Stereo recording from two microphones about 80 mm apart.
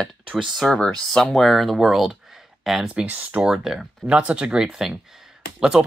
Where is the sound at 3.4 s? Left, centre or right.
Centre.